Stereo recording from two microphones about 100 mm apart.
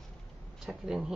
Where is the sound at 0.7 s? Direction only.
5° right (ahead or behind).